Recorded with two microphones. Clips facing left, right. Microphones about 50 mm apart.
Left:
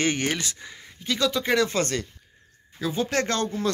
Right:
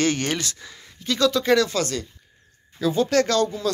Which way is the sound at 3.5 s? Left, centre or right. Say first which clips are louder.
Right 1 dB; left.